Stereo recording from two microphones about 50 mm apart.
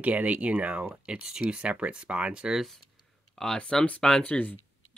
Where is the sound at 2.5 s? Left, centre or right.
Centre.